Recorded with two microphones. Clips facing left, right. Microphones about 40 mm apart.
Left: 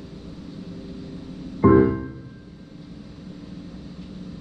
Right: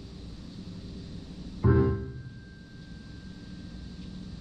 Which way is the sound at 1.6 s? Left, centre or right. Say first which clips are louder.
Left 10 dB; left.